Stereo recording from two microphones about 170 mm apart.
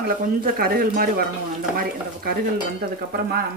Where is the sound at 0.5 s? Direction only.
60° right (ahead or behind).